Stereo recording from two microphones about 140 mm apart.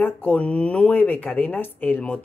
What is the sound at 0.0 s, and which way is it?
Speech, 10° left (ahead or behind).